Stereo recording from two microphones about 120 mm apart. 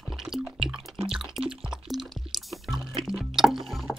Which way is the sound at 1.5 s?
5° right (ahead or behind).